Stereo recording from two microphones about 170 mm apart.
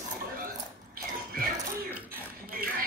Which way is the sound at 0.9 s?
55° right (ahead or behind).